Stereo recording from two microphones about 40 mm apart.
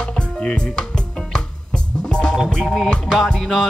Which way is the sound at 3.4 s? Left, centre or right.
Centre.